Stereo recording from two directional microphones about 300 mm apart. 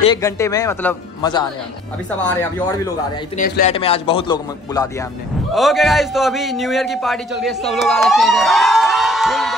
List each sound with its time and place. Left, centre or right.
0.0 s a man's voice: centre
3.3 s a man's voice: left
5.5 s a man's voice: centre